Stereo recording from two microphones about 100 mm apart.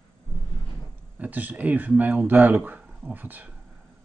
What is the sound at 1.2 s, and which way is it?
Speech, 15° right (ahead or behind).